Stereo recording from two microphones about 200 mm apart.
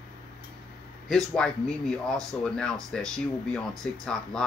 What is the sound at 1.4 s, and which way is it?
Speech, 5° left (ahead or behind).